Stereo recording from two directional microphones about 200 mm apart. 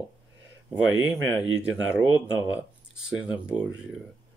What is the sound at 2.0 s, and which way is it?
Speech, 20° left (ahead or behind).